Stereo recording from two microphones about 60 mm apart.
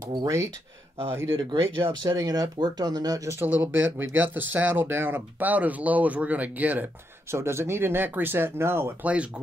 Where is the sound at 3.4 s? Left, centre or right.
Right.